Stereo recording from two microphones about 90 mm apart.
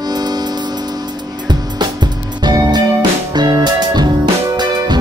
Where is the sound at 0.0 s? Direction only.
50° right (ahead or behind).